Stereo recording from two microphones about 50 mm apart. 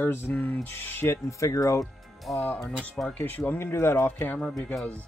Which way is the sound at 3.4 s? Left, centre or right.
Left.